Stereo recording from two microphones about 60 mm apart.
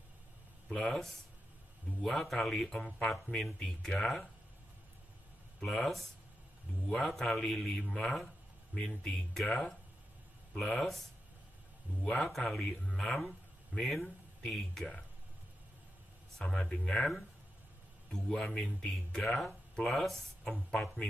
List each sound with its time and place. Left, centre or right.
0.7 s speech: centre
2.0 s speech: centre
2.2 s speech: centre
5.6 s speech: centre
12.0 s speech: centre
16.3 s speech: centre
18.1 s speech: centre